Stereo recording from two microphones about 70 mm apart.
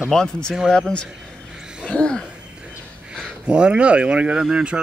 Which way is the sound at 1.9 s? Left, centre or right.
Centre.